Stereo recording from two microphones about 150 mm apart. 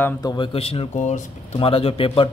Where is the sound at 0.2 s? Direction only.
35° left (ahead or behind).